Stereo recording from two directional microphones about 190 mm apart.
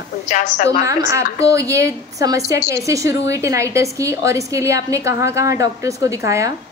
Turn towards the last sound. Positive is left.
turn(degrees=-15)  # may be behind; listen again after turning